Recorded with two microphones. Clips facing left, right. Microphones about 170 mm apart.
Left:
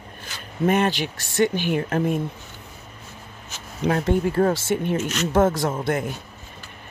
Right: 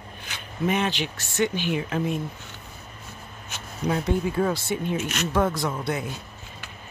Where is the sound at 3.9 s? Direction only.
55° left (ahead or behind).